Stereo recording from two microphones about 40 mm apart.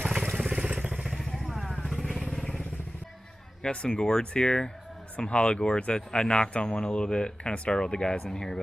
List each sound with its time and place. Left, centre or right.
0.0 s vehicle: right
1.5 s vehicle: centre
3.6 s speech: left